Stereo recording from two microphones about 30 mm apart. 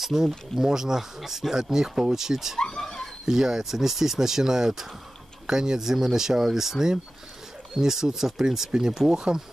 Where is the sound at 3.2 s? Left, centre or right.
Centre.